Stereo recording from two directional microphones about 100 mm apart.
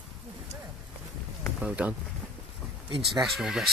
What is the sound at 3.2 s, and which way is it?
Speech, 5° right (ahead or behind).